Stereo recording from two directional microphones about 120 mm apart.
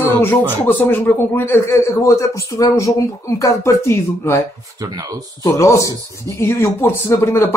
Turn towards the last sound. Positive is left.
turn(degrees=20)  # may be behind; listen again after turning